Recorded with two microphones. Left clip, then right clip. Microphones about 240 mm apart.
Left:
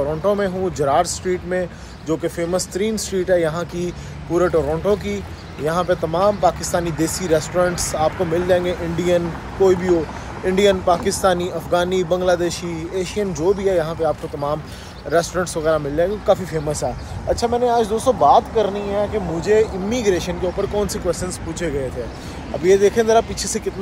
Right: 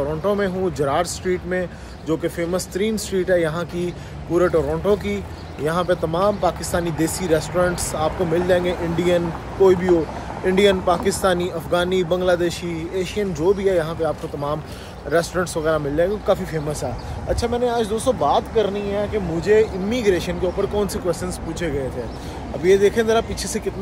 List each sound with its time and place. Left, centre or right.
0.0 s speech: centre